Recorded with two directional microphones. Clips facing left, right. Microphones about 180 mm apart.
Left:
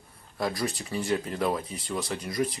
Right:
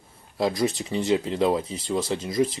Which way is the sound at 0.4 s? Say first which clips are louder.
Right 6 dB; 20° right (ahead or behind).